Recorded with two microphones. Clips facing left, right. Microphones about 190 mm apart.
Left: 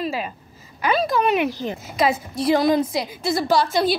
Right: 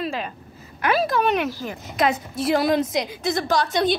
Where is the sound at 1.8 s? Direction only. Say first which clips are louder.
Even; 5° left (ahead or behind).